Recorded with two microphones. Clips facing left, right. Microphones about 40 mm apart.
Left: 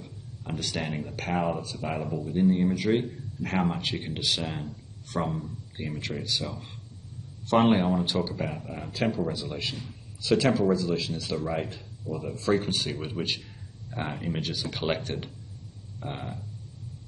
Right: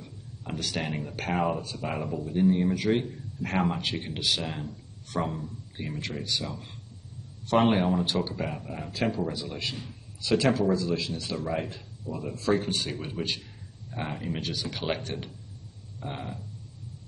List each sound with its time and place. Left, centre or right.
0.0 s a sound: centre
0.7 s a man's voice: centre
13.2 s a man's voice: left
13.8 s a man's voice: centre